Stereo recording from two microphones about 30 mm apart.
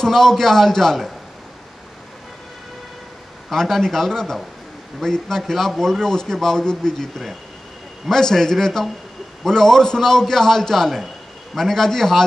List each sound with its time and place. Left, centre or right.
0.0 s a man's voice: centre
3.4 s a man's voice: centre
8.1 s a man's voice: centre